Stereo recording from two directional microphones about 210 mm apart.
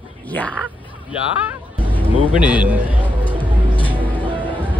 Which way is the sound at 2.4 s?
5° right (ahead or behind).